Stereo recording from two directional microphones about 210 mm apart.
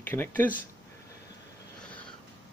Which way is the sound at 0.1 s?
10° left (ahead or behind).